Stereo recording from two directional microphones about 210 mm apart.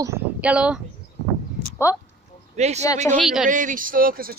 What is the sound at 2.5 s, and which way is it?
Speech, 30° right (ahead or behind).